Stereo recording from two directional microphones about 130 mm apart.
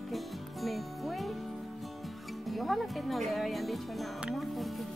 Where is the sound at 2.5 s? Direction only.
Centre (ahead or behind).